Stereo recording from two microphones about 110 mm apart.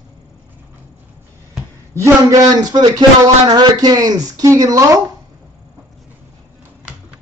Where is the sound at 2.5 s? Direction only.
35° right (ahead or behind).